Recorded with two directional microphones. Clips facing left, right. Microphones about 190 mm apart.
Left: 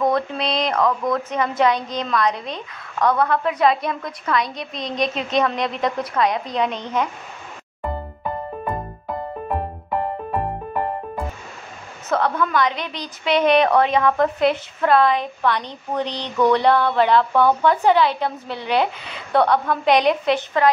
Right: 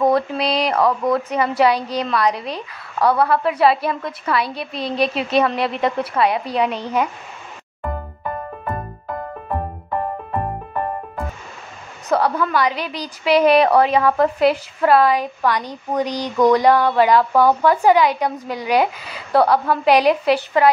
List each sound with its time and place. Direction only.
0.1 s a woman's voice: 10° right (ahead or behind)
9.5 s music: 10° left (ahead or behind)
12.1 s a woman's voice: 10° right (ahead or behind)